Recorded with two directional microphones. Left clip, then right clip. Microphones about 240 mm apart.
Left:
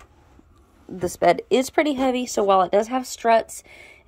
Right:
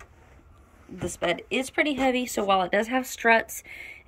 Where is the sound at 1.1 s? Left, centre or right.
Left; by 4.0 s centre.